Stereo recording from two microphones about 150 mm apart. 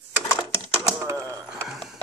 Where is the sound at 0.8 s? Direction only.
20° right (ahead or behind).